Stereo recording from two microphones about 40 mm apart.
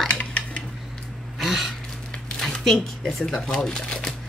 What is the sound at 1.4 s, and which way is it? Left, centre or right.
Gasp, centre.